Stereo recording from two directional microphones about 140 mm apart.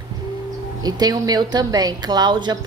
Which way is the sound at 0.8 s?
30° right (ahead or behind).